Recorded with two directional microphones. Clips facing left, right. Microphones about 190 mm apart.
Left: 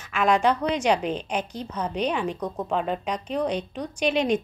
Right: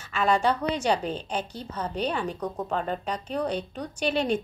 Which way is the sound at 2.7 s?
5° left (ahead or behind).